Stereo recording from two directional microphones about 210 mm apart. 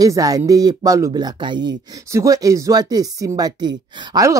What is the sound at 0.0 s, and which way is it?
Speech, 15° right (ahead or behind).